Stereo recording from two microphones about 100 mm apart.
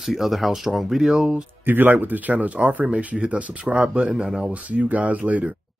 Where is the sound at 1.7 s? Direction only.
20° right (ahead or behind).